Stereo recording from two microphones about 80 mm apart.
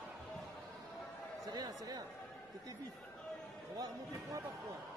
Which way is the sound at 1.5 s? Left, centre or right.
Right.